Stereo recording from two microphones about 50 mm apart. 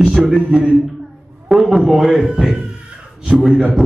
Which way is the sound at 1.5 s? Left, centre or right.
Centre.